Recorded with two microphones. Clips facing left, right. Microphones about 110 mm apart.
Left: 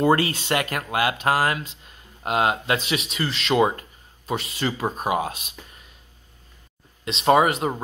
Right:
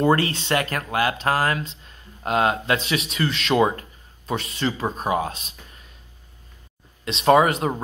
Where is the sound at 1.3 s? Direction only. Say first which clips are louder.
Left 1 dB; 45° right (ahead or behind).